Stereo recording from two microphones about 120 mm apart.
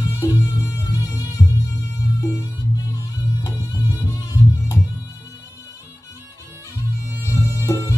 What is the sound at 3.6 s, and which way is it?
Music, 15° right (ahead or behind).